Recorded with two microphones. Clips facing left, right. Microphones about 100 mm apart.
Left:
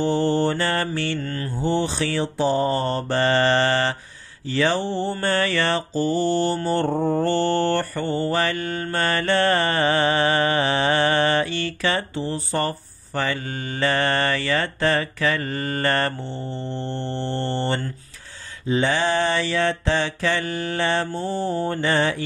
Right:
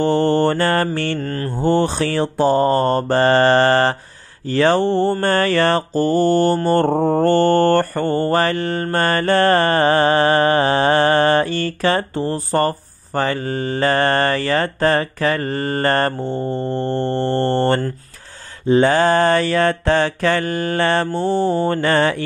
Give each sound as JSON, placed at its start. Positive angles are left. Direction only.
{"t": 0.0, "sound": "mantra", "side_deg": -55}